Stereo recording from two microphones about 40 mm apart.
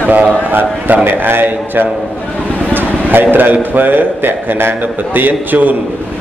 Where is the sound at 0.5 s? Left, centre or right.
Right.